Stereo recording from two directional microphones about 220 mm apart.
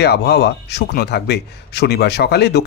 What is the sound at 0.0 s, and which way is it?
A man's voice, 50° left (ahead or behind).